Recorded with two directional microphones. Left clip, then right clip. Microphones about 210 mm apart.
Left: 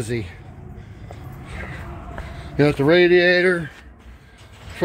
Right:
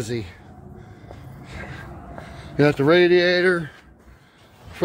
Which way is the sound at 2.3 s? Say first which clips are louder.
Even; 5° right (ahead or behind).